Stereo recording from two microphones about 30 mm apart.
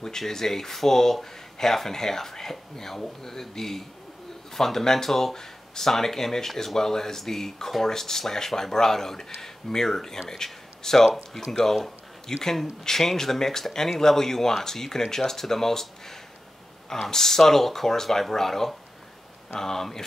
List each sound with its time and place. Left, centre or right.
0.3 s a man's voice: centre